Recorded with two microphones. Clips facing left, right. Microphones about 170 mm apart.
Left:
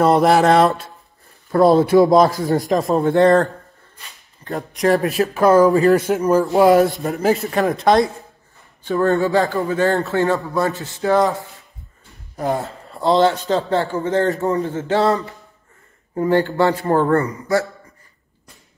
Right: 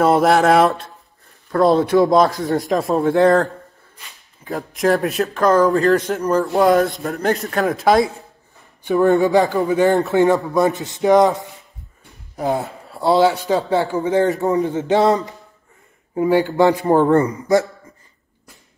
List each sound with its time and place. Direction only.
0.0 s speech: centre (ahead or behind)
4.5 s a man's voice: centre (ahead or behind); by 17.6 s 20° right (ahead or behind)